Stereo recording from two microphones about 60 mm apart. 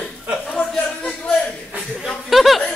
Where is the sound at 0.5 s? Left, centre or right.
Centre.